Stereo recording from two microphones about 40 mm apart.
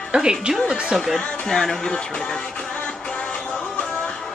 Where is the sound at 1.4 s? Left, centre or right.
Centre.